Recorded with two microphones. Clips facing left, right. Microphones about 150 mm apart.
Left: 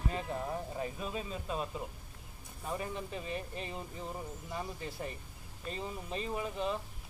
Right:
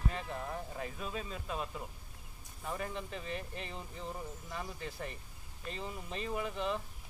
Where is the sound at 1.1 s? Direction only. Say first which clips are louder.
Left 2 dB; 25° left (ahead or behind); by 4.6 s 10° left (ahead or behind).